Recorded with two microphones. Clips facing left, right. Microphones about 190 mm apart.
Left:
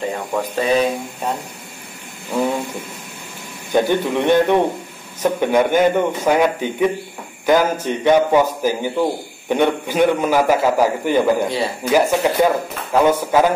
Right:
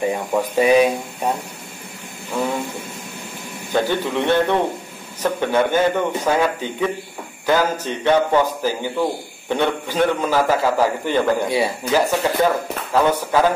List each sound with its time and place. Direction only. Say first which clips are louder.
0.0 s speech: right 2 dB; 15° right (ahead or behind)
3.7 s a man's voice: left 3 dB; 15° left (ahead or behind)
11.4 s speech: right 1 dB; 10° right (ahead or behind)
11.9 s a man's voice: left 4 dB; 15° left (ahead or behind)